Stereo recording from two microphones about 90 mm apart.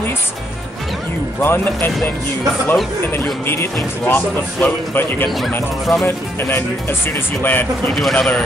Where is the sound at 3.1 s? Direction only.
25° left (ahead or behind).